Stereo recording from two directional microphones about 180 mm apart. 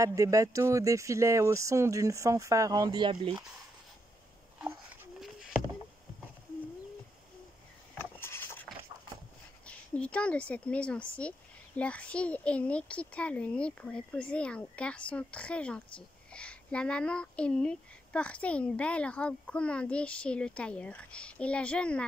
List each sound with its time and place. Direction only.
0.0 s speech: 20° right (ahead or behind)
8.0 s vehicle: 10° left (ahead or behind)
9.7 s speech: 5° left (ahead or behind)